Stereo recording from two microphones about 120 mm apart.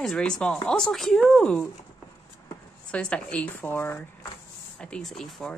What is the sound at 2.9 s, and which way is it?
A woman's voice, 10° left (ahead or behind).